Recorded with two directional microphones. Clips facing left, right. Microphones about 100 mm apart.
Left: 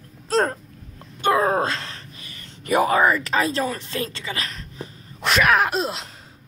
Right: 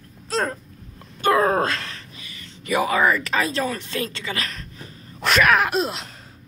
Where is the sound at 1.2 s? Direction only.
20° left (ahead or behind).